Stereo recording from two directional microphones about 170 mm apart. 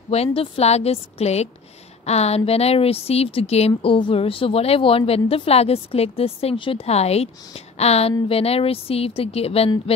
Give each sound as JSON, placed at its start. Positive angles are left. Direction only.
{"t": 0.1, "sound": "a woman's voice", "side_deg": 35}